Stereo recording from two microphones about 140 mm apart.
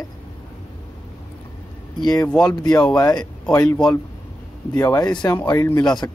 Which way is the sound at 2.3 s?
5° left (ahead or behind).